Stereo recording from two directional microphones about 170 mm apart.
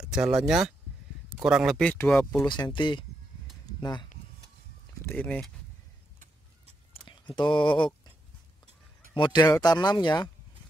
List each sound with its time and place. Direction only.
0.0 s speech: 5° right (ahead or behind)
2.3 s speech: 25° left (ahead or behind)
5.0 s speech: 10° left (ahead or behind)
6.9 s a sound: 25° left (ahead or behind)
9.1 s speech: 25° left (ahead or behind)